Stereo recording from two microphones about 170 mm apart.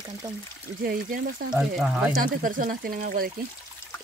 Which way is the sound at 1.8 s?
5° right (ahead or behind).